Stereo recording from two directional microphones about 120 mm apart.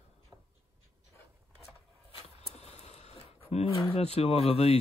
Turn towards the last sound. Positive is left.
turn(degrees=55)  # may be behind; listen again after turning